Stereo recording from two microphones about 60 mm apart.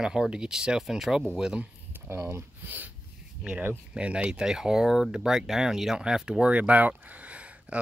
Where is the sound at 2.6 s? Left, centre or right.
Right.